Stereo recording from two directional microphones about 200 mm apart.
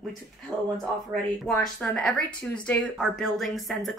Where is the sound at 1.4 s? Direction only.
5° left (ahead or behind).